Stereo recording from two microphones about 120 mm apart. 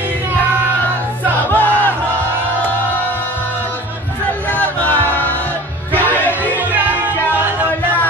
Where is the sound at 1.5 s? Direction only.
15° left (ahead or behind).